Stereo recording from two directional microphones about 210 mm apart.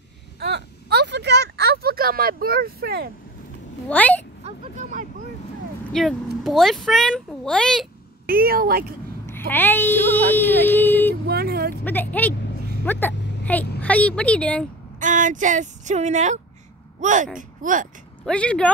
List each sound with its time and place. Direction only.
0.4 s a sound: 50° right (ahead or behind)
3.9 s a woman's voice: 10° left (ahead or behind)
4.5 s vehicle: 35° right (ahead or behind)
5.9 s a child's voice: centre (ahead or behind)
8.3 s speech: 45° right (ahead or behind)
9.2 s speech: 10° left (ahead or behind)
10.3 s a sound: 10° left (ahead or behind)
11.2 s speech: 50° right (ahead or behind)
11.7 s a woman's voice: 10° left (ahead or behind)
13.4 s a sound: 5° left (ahead or behind)
13.7 s a woman's voice: 5° left (ahead or behind)
15.0 s speech: 35° right (ahead or behind)
18.2 s a child's voice: 5° left (ahead or behind)